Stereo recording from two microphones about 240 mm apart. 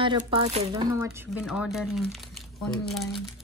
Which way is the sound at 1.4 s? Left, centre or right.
Centre.